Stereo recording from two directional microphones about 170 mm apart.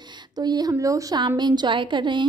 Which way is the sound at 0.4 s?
25° right (ahead or behind).